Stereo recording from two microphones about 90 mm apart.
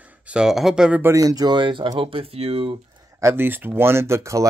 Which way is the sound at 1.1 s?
45° right (ahead or behind).